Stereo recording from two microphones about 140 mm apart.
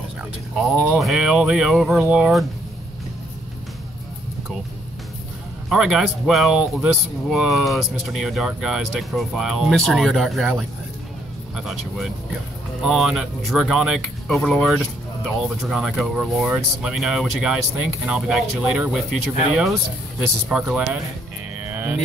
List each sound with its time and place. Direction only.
0.6 s speech: centre (ahead or behind)
5.7 s speech: 5° right (ahead or behind)